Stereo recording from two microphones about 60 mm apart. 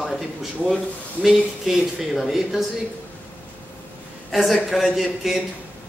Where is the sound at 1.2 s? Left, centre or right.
Centre.